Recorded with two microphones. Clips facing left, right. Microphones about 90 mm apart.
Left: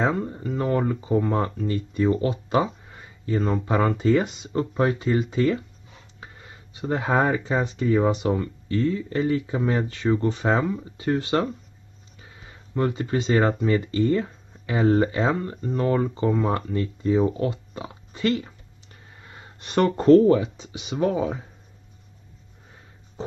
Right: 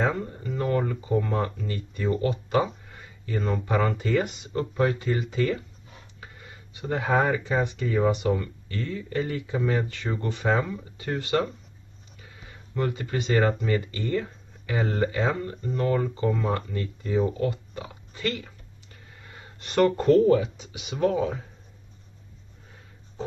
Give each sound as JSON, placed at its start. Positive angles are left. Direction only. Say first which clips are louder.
{"t": 0.0, "sound": "speech", "louder": "left 3 dB", "side_deg": 25}
{"t": 6.8, "sound": "speech", "louder": "left 2 dB", "side_deg": 25}
{"t": 12.7, "sound": "speech", "louder": "left 4 dB", "side_deg": 25}